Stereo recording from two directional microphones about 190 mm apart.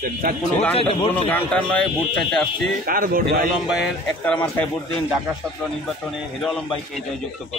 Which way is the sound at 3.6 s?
Centre (ahead or behind).